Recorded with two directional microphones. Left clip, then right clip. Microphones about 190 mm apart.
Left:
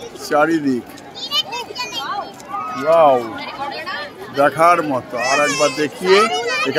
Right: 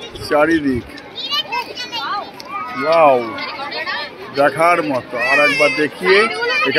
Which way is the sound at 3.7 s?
45° left (ahead or behind).